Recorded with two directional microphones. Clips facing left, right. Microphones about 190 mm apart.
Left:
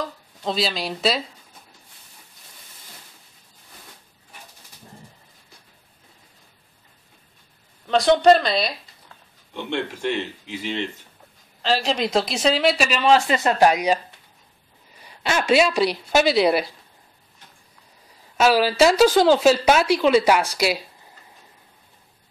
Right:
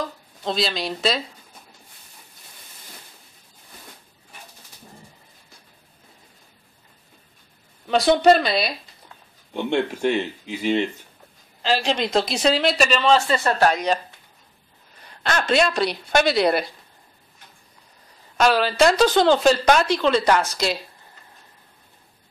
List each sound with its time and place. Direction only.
0.4 s speech: 5° left (ahead or behind)
7.9 s speech: 5° right (ahead or behind)
9.5 s speech: 45° right (ahead or behind)
11.6 s speech: centre (ahead or behind)
15.2 s speech: 10° left (ahead or behind)
18.4 s speech: 5° left (ahead or behind)